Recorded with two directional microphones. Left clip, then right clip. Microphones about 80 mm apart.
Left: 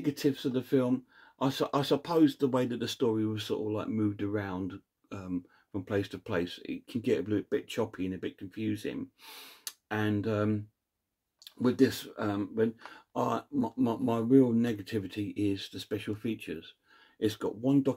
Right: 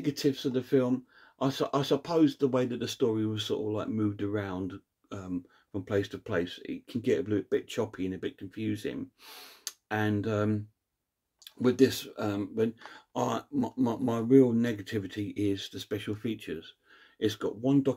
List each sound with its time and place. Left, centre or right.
0.0 s speech: centre
6.9 s speech: centre
12.0 s speech: right
12.7 s speech: centre
16.9 s speech: centre